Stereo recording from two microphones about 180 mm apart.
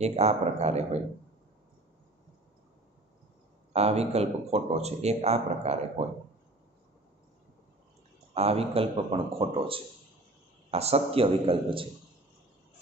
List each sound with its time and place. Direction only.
0.0 s speech: 35° right (ahead or behind)
3.7 s speech: 35° right (ahead or behind)
8.4 s speech: 35° right (ahead or behind)